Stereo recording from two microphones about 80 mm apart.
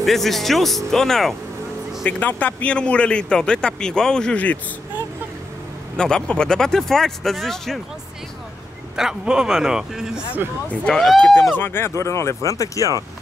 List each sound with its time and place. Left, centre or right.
0.0 s speech: centre
2.0 s a man's voice: centre
5.9 s speech: centre
8.9 s speech: centre
10.7 s a man's voice: centre
11.5 s speech: left